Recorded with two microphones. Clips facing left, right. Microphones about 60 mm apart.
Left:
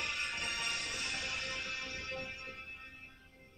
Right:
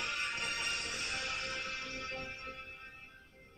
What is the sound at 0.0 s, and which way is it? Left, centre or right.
Music, right.